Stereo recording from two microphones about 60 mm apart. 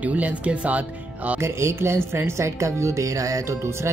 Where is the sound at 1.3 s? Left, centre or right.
Right.